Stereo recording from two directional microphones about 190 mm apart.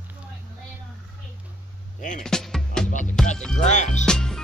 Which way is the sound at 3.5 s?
40° left (ahead or behind).